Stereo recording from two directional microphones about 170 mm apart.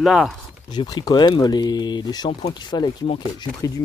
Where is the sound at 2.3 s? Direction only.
40° left (ahead or behind).